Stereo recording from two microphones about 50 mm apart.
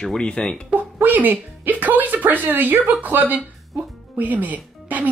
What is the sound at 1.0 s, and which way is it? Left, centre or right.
Speech, right.